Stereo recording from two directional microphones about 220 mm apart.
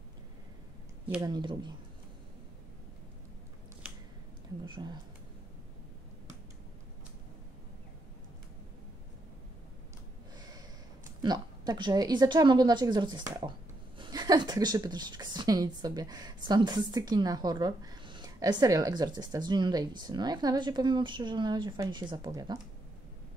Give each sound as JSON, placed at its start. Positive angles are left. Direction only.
{"t": 1.2, "sound": "speech", "side_deg": -20}
{"t": 4.6, "sound": "speech", "side_deg": -20}
{"t": 10.3, "sound": "snort", "side_deg": -20}
{"t": 11.1, "sound": "speech", "side_deg": -20}